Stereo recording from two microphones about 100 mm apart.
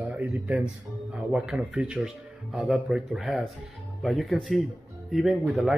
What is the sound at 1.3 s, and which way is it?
Speech, 10° right (ahead or behind).